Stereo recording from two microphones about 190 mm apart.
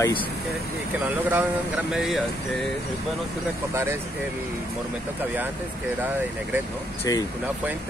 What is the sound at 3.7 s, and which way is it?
Speech, 15° right (ahead or behind).